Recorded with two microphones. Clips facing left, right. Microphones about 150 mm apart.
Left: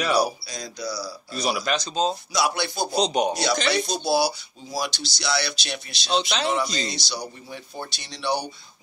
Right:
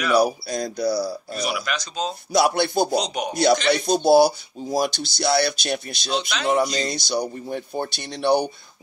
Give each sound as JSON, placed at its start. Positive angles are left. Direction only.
{"t": 0.1, "sound": "speech", "side_deg": -55}
{"t": 1.4, "sound": "speech", "side_deg": 30}
{"t": 2.3, "sound": "speech", "side_deg": -50}
{"t": 3.0, "sound": "a man's voice", "side_deg": 25}
{"t": 3.7, "sound": "speech", "side_deg": -50}
{"t": 6.0, "sound": "a man's voice", "side_deg": 30}
{"t": 6.4, "sound": "speech", "side_deg": -45}